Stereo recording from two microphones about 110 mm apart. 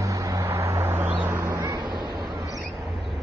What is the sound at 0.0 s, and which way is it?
Vehicle, 30° right (ahead or behind).